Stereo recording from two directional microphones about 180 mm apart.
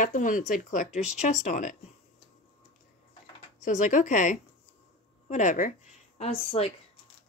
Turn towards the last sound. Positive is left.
turn(degrees=35)  # may be behind; listen again after turning